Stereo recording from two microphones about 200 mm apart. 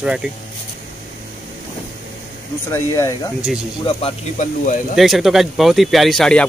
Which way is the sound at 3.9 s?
30° left (ahead or behind).